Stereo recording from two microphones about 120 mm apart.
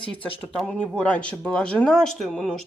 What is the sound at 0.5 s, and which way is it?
Speech, 5° left (ahead or behind).